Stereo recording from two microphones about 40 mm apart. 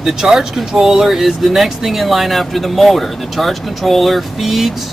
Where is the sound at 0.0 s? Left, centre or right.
Centre.